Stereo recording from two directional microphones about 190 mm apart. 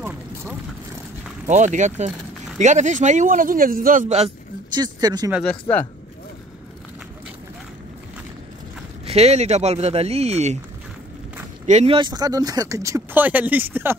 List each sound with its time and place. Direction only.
1.5 s a man's voice: 40° right (ahead or behind)
4.7 s speech: 20° right (ahead or behind)
9.0 s a man's voice: 35° right (ahead or behind)
11.6 s speech: 35° right (ahead or behind); by 13.9 s 10° right (ahead or behind)